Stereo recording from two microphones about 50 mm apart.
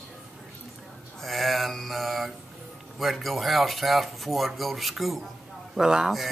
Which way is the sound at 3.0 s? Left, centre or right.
Centre.